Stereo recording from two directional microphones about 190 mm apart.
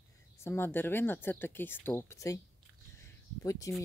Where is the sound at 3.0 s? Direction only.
15° left (ahead or behind).